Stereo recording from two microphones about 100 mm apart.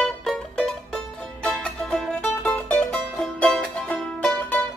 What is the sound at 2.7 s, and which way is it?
Music, 10° left (ahead or behind).